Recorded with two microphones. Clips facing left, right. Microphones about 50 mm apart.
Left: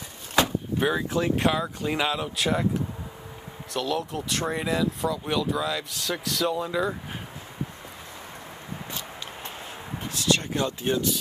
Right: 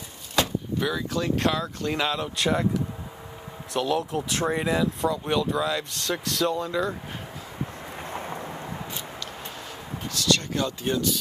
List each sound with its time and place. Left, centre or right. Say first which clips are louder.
0.4 s door: left 2 dB; left
1.2 s speech: right 1 dB; centre
3.7 s speech: right 3 dB; centre
10.1 s speech: even; left